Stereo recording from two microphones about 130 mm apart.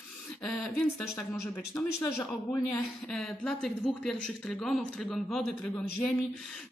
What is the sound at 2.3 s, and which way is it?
Speech, 5° left (ahead or behind).